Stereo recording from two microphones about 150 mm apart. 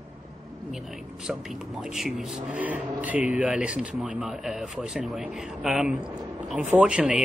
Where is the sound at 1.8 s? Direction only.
Centre (ahead or behind).